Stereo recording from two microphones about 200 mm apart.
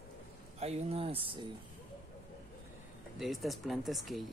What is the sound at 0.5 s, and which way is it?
Speech, 30° right (ahead or behind).